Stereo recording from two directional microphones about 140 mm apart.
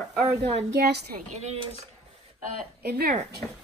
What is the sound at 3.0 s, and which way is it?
Speech, 60° right (ahead or behind).